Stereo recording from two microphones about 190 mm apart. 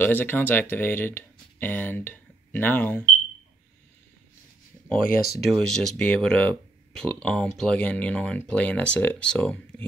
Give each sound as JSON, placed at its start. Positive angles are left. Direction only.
{"t": 0.0, "sound": "speech", "side_deg": 10}
{"t": 5.0, "sound": "speech", "side_deg": 50}
{"t": 5.4, "sound": "speech", "side_deg": 0}